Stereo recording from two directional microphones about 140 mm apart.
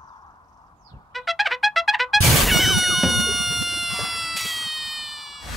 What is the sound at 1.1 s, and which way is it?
Trumpet, centre (ahead or behind).